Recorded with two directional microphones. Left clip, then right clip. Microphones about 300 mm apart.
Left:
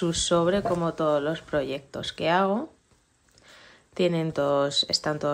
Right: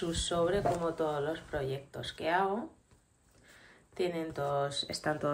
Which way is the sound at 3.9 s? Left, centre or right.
Centre.